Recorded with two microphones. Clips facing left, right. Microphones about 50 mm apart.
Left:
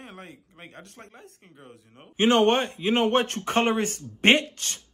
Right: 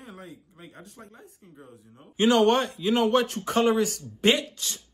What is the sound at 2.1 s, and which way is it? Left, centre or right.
A man's voice, left.